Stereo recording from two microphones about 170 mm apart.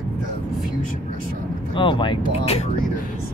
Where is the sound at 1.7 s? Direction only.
30° left (ahead or behind).